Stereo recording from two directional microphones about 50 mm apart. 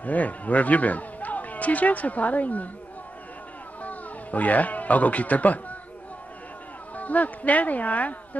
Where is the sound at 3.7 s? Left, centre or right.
Left.